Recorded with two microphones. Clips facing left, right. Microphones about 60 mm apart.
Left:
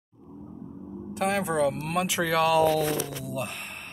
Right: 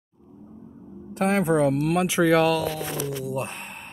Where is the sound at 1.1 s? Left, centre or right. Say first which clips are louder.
Right 5 dB; right.